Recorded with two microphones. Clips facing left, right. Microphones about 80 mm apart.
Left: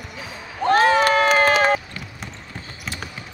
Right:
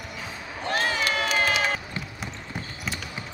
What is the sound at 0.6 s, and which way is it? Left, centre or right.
Run, left.